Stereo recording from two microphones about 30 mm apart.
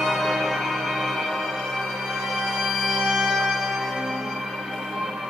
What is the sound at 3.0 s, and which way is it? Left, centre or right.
Music, centre.